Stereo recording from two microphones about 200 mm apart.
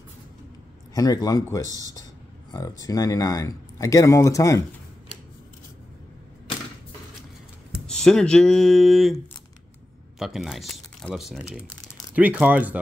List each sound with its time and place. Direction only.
0.9 s speech: 20° left (ahead or behind)
7.8 s speech: 5° left (ahead or behind)